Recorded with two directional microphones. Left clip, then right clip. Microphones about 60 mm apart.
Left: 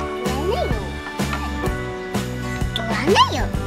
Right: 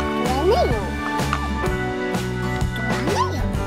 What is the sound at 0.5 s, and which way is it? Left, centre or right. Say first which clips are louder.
Music: right 5 dB; right.